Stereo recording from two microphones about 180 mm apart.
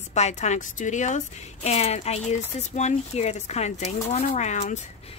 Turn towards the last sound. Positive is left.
turn(degrees=40)  # may be behind; listen again after turning